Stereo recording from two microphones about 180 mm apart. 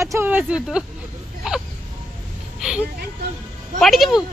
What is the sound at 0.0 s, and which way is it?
Speech, 15° right (ahead or behind).